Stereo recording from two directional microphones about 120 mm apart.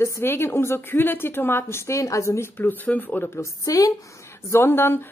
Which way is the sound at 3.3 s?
30° left (ahead or behind).